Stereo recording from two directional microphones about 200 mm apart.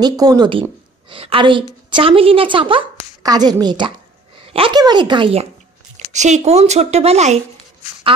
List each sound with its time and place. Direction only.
0.0 s a woman's voice: 20° right (ahead or behind)